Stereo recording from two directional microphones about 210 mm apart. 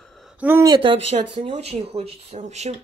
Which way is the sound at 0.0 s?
Centre (ahead or behind).